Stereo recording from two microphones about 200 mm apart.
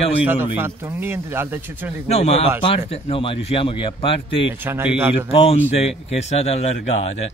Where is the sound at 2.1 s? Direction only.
30° left (ahead or behind).